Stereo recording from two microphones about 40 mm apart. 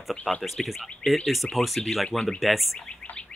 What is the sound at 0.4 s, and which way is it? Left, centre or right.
Speech, centre.